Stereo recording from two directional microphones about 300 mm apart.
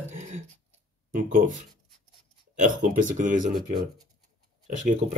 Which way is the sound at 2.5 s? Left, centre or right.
Right.